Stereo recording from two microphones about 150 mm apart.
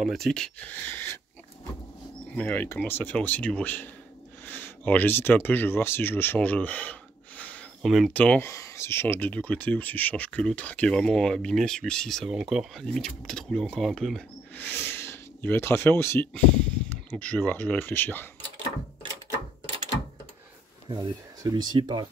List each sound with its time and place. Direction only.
0.0 s speech: centre (ahead or behind)
2.3 s speech: 10° left (ahead or behind)
20.9 s speech: 25° right (ahead or behind)